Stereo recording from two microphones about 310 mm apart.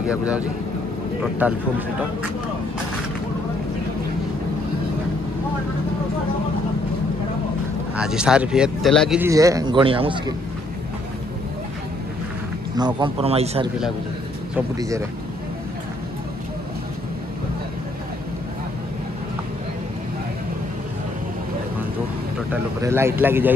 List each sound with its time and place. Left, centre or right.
0.1 s speech: centre
7.9 s speech: centre
12.7 s speech: centre
22.5 s speech: centre